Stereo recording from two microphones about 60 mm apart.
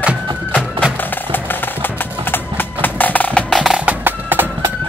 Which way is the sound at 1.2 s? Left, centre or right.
Left.